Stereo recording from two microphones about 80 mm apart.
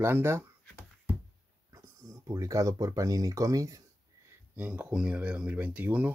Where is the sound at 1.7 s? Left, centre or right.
Right.